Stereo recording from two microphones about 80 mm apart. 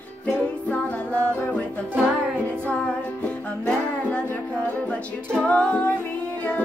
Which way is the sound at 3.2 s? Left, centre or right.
Centre.